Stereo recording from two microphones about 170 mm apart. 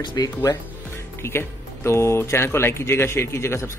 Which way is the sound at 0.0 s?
25° left (ahead or behind).